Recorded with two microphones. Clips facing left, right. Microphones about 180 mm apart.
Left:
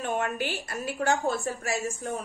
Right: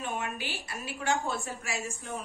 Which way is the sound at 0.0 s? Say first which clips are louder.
Left 6 dB; 50° left (ahead or behind).